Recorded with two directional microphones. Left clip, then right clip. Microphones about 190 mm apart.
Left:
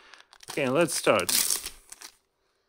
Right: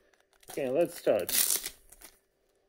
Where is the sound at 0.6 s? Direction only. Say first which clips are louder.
Left 4 dB; 35° left (ahead or behind).